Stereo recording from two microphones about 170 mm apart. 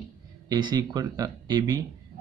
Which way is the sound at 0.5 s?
25° right (ahead or behind).